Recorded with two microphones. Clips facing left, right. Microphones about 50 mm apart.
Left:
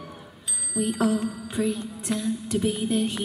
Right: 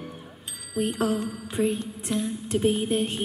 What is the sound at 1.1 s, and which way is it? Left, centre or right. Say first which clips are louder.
Music: left 1 dB; right.